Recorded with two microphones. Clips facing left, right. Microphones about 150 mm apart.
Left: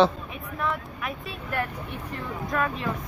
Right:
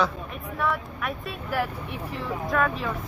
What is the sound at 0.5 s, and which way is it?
Speech, centre (ahead or behind).